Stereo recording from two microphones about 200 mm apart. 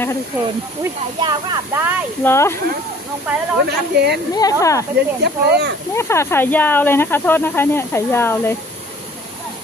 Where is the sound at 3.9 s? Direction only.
55° right (ahead or behind).